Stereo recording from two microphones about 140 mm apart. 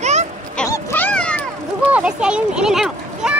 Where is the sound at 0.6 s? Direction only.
20° left (ahead or behind).